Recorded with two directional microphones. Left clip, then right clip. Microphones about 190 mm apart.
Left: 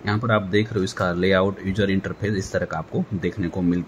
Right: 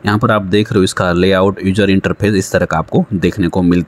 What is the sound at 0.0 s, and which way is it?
Speech, 40° right (ahead or behind).